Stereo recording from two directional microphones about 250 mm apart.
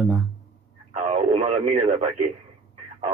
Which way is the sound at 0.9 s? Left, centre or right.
Right.